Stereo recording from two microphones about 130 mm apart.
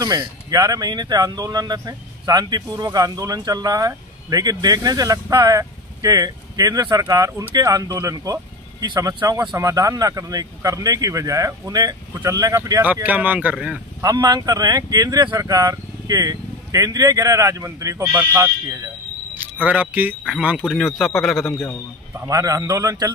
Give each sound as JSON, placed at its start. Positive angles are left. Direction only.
{"t": 0.0, "sound": "speech", "side_deg": -30}
{"t": 12.8, "sound": "speech", "side_deg": -10}
{"t": 14.0, "sound": "speech", "side_deg": -30}
{"t": 21.5, "sound": "a man's voice", "side_deg": 20}
{"t": 22.3, "sound": "speech", "side_deg": -25}